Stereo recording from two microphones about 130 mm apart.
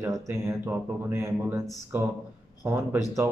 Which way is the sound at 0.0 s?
20° right (ahead or behind).